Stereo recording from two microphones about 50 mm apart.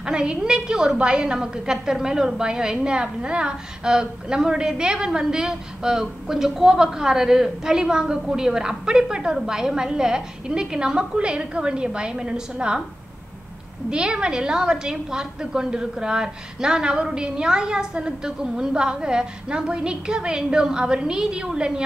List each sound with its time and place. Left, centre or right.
0.0 s a woman's voice: centre
13.8 s a woman's voice: centre